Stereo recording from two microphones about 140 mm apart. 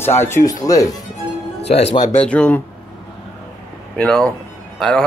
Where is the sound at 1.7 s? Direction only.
50° left (ahead or behind).